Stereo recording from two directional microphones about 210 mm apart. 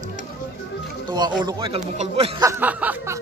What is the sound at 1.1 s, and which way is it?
Speech, 20° right (ahead or behind).